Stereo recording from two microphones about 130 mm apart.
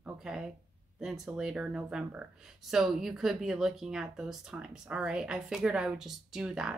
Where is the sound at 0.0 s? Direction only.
5° right (ahead or behind).